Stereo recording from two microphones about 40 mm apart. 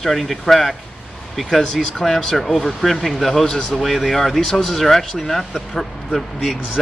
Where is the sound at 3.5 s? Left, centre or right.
Centre.